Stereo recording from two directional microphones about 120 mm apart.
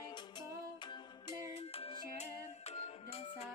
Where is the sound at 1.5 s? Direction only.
55° left (ahead or behind).